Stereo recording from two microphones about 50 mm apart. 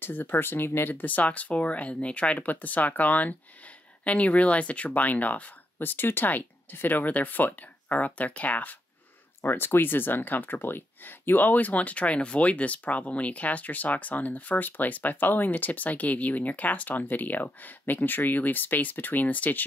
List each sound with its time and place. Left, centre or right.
0.0 s speech: left
2.3 s speech: left
9.4 s speech: left